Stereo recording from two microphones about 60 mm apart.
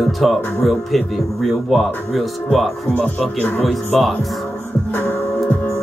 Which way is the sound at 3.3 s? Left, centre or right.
Centre.